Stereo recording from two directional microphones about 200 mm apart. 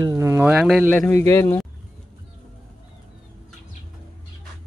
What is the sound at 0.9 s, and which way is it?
Speech, 10° left (ahead or behind).